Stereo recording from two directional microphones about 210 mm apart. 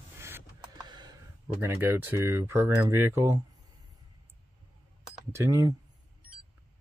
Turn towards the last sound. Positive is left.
turn(degrees=-15)  # may be behind; listen again after turning